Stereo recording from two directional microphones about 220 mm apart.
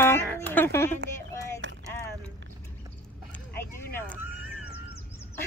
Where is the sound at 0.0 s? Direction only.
10° left (ahead or behind).